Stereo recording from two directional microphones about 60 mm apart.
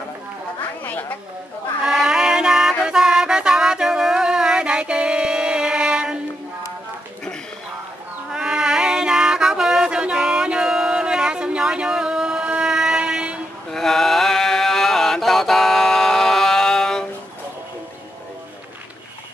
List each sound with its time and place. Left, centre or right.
0.8 s cat: left
1.9 s music: centre
8.3 s a sound: centre
13.7 s mantra: centre